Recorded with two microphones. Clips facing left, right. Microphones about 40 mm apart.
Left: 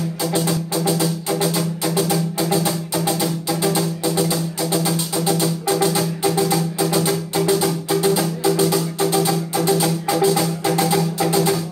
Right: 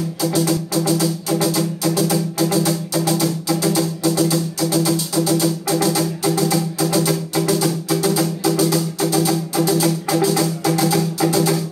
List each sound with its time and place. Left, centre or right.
0.2 s music: left